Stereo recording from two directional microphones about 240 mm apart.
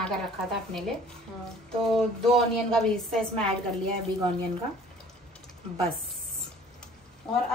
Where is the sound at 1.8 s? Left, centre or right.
Centre.